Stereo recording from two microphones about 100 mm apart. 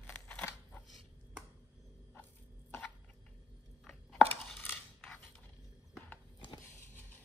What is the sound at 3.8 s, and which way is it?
Chopping, 5° left (ahead or behind).